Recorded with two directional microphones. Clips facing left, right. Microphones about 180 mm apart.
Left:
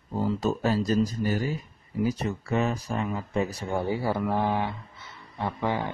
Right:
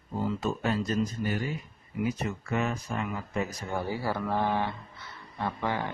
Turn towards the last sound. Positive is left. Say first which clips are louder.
# left 3 dB
turn(degrees=20)  # may be behind; listen again after turning